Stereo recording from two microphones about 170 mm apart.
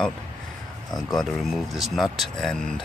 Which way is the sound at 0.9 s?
Centre (ahead or behind).